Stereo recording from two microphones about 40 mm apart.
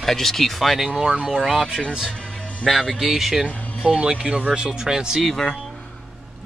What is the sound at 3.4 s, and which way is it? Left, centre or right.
Speech, right.